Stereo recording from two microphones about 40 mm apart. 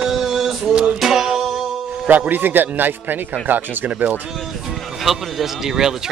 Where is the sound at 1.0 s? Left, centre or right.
Centre.